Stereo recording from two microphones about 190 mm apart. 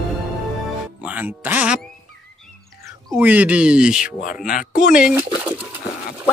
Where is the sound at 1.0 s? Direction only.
10° right (ahead or behind).